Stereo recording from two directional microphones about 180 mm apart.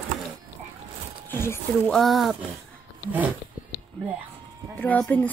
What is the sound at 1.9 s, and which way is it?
Speech, centre (ahead or behind).